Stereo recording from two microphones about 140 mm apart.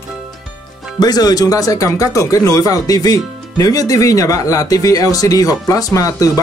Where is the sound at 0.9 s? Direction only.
30° left (ahead or behind).